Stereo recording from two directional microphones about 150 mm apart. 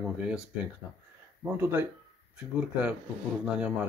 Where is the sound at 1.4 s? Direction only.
15° right (ahead or behind).